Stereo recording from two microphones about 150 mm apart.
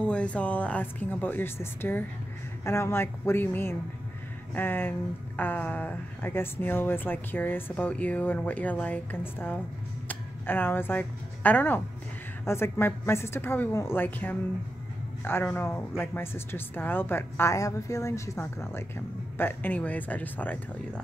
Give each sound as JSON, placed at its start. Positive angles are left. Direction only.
{"t": 0.0, "sound": "speech", "side_deg": 10}
{"t": 15.5, "sound": "speech", "side_deg": 15}